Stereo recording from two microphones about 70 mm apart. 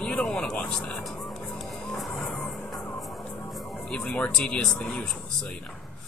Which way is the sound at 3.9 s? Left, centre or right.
Centre.